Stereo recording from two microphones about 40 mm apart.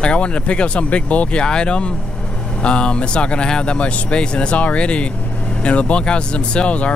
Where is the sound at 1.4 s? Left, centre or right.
Left.